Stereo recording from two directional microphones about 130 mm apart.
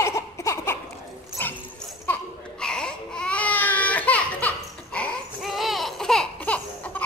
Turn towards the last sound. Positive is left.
turn(degrees=10)  # may be behind; listen again after turning